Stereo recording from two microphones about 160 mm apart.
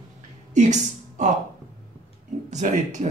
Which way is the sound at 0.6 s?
50° right (ahead or behind).